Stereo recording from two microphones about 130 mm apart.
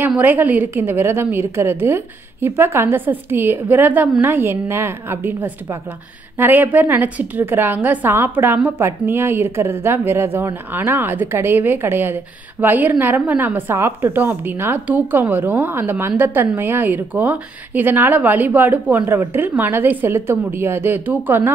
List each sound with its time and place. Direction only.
0.0 s a woman's voice: 15° right (ahead or behind)